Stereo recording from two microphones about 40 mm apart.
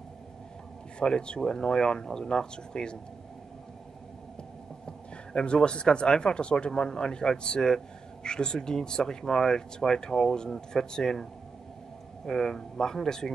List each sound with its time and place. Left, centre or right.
0.9 s speech: left
4.8 s speech: left
12.3 s speech: centre